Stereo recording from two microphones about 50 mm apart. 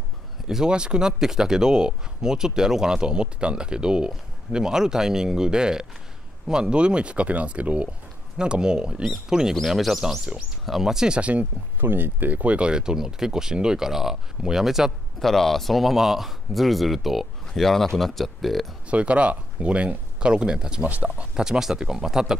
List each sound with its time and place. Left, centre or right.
0.5 s speech: centre
8.4 s speech: centre
11.1 s speech: right
11.8 s speech: right; by 14.9 s centre
15.1 s speech: centre
18.9 s speech: right
20.8 s speech: right
21.4 s speech: centre